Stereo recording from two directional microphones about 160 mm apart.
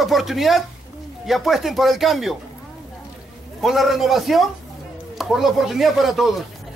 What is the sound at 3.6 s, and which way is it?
A man's voice, centre (ahead or behind).